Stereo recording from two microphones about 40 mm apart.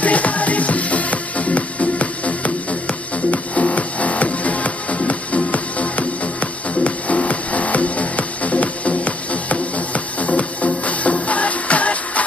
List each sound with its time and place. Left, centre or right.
0.0 s music: left